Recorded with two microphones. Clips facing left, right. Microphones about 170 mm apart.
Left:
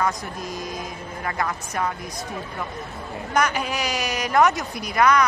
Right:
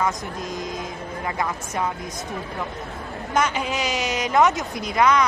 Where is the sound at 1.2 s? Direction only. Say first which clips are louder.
Even; 15° right (ahead or behind).